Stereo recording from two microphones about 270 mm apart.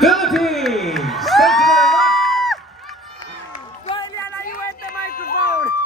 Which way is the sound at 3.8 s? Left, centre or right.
Centre.